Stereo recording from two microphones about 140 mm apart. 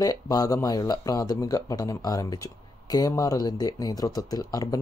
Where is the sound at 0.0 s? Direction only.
25° left (ahead or behind).